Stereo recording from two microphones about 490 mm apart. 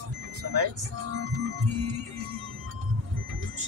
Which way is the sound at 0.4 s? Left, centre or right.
Right.